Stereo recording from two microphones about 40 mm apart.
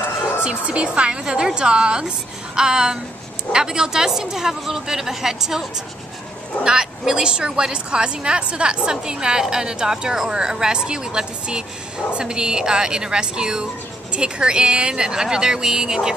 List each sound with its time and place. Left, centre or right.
0.4 s a woman's voice: right